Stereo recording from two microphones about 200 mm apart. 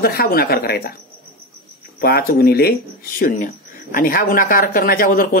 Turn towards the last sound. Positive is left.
turn(degrees=45)  # may be behind; listen again after turning